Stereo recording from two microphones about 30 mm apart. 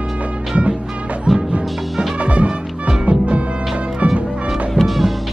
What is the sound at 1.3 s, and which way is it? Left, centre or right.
Music, centre.